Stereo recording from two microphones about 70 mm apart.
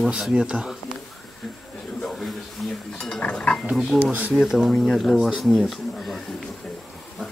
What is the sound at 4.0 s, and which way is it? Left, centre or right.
Speech, right.